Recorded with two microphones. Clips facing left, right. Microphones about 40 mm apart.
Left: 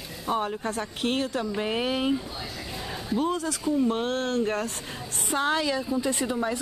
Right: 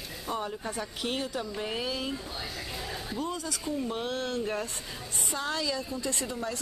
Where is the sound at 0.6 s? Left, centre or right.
Left.